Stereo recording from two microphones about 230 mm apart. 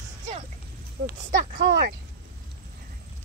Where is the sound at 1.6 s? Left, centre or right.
Right.